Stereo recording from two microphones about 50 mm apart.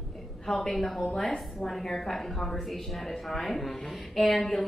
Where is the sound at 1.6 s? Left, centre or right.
Centre.